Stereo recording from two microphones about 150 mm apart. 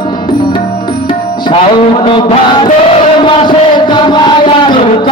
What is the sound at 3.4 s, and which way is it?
Chant, 30° left (ahead or behind).